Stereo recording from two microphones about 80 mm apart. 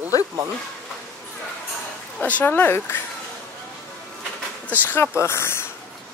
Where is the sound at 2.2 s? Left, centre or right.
Left.